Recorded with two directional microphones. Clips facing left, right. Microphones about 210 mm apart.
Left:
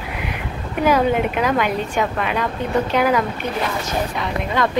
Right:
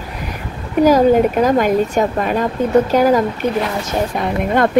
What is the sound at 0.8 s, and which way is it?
A woman's voice, 40° right (ahead or behind).